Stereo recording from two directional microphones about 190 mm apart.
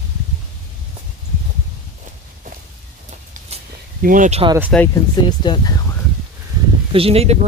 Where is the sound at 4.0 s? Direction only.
45° right (ahead or behind).